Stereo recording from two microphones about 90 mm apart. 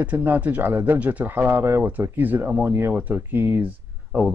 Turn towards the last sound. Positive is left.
turn(degrees=-20)  # may be behind; listen again after turning